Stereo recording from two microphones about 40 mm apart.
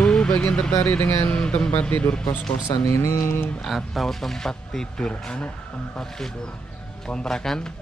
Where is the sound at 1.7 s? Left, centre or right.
Left.